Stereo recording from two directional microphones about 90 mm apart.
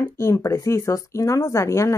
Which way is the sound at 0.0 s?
35° left (ahead or behind).